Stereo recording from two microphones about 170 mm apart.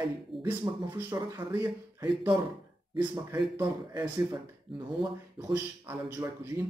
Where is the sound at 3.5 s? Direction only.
15° right (ahead or behind).